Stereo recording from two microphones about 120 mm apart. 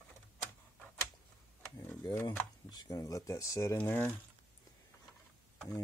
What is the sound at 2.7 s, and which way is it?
Speech, 30° left (ahead or behind).